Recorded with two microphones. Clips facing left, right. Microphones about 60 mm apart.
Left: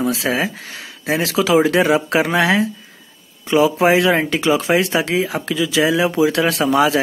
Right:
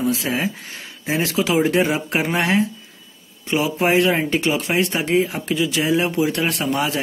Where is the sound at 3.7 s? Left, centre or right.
Left.